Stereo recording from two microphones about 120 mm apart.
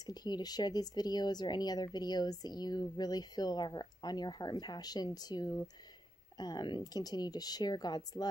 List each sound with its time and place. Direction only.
0.0 s speech: 35° left (ahead or behind)